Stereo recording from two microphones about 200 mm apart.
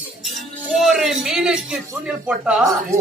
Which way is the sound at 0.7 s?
Centre (ahead or behind).